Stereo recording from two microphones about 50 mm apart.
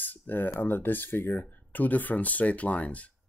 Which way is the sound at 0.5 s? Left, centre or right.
Left.